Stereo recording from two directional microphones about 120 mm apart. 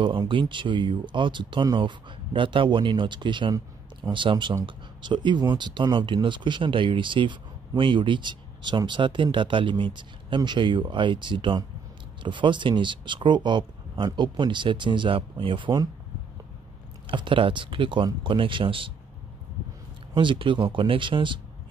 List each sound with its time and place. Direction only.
0.0 s speech: 45° right (ahead or behind)
17.1 s speech: 45° right (ahead or behind)
20.2 s speech: 45° right (ahead or behind)